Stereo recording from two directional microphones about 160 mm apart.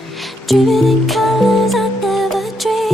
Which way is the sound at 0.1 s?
Centre (ahead or behind).